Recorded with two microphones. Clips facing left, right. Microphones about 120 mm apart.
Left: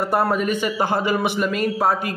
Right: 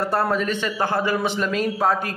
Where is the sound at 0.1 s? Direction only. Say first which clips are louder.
Left 2 dB; 10° left (ahead or behind).